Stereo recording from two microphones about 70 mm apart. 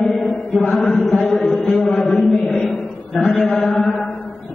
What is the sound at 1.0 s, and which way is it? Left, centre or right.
Speech, left.